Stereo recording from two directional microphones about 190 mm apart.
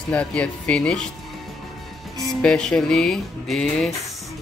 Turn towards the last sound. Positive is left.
turn(degrees=0)  # may be behind; listen again after turning